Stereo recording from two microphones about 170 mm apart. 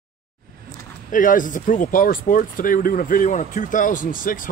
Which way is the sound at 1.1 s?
50° left (ahead or behind).